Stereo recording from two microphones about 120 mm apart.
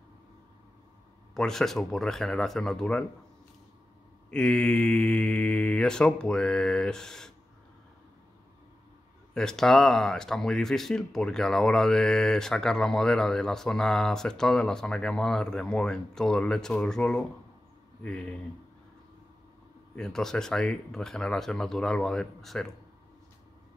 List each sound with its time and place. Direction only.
1.3 s speech: 5° left (ahead or behind)
4.3 s mantra: 5° left (ahead or behind)
9.3 s speech: 5° left (ahead or behind)
18.0 s mantra: 10° left (ahead or behind)
20.0 s speech: 5° left (ahead or behind)